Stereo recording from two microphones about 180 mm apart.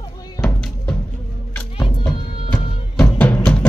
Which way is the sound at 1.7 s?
25° left (ahead or behind).